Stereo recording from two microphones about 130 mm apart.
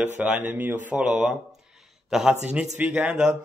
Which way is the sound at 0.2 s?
15° right (ahead or behind).